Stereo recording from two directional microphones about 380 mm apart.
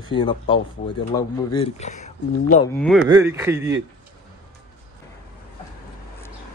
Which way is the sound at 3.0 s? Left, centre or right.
Centre.